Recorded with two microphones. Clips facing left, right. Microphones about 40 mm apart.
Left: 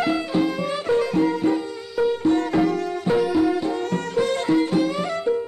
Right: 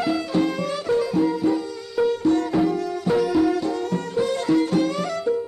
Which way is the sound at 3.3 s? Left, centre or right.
Centre.